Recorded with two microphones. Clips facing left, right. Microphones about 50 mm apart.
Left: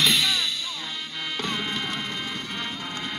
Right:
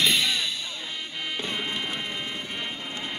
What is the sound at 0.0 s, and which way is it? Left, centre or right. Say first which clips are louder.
Music: left 1 dB; centre.